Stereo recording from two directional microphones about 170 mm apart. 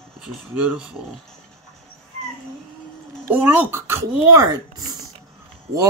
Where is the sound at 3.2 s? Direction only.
15° right (ahead or behind).